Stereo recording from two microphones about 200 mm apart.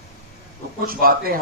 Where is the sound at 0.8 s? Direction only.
45° right (ahead or behind).